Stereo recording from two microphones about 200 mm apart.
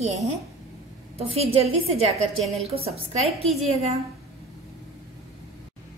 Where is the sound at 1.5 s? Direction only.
30° right (ahead or behind).